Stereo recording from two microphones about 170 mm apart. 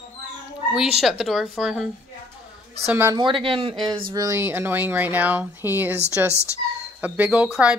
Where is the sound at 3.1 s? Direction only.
30° right (ahead or behind).